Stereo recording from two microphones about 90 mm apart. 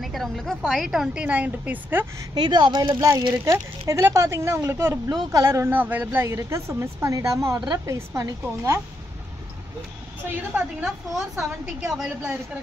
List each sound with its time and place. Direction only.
0.0 s a woman's voice: centre (ahead or behind); by 2.0 s 20° right (ahead or behind)
2.3 s speech: 55° right (ahead or behind)
3.4 s a woman's voice: 30° right (ahead or behind)
5.0 s a woman's voice: 45° right (ahead or behind); by 6.2 s 20° right (ahead or behind)
6.2 s a woman's voice: 35° right (ahead or behind)
7.8 s a woman's voice: 35° right (ahead or behind)
10.8 s a woman's voice: 5° right (ahead or behind)